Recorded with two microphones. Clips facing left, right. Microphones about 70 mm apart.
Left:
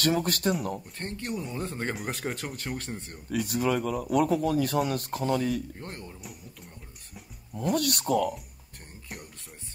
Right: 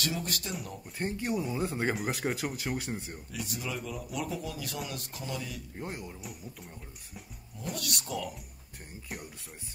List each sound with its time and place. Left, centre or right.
0.0 s speech: left
0.9 s speech: centre
3.3 s speech: left
5.8 s speech: centre
7.7 s speech: left